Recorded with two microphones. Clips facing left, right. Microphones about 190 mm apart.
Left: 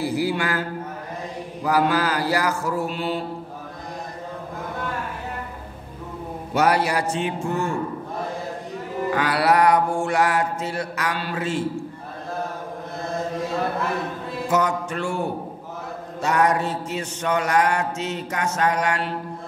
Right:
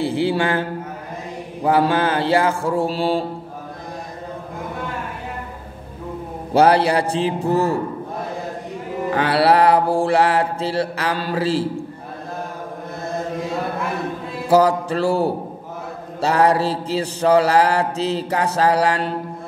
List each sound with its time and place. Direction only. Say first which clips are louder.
0.0 s mantra: right 4 dB; 30° right (ahead or behind)
6.5 s mantra: right 6 dB; 30° right (ahead or behind)
9.1 s mantra: right 4 dB; 30° right (ahead or behind)
14.5 s mantra: right 8 dB; 35° right (ahead or behind)